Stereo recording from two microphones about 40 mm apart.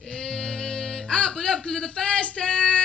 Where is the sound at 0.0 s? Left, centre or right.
Centre.